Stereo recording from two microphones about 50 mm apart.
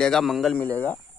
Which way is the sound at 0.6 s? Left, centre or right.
Left.